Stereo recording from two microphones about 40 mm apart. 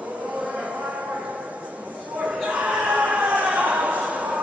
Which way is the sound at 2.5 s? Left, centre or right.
Right.